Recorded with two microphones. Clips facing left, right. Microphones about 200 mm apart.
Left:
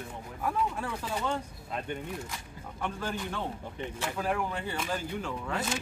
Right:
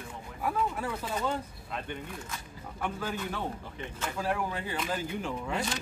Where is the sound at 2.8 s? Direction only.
10° right (ahead or behind).